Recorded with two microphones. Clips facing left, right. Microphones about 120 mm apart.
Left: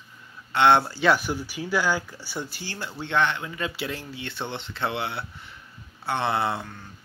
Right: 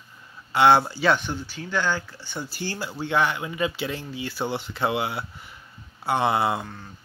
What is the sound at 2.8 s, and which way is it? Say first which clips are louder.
Speech: right 1 dB; 5° right (ahead or behind).